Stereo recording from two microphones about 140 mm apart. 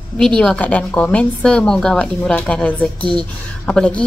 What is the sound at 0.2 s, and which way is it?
A woman's voice, 5° left (ahead or behind).